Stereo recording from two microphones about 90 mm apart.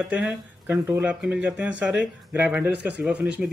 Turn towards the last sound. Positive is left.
turn(degrees=-10)  # may be behind; listen again after turning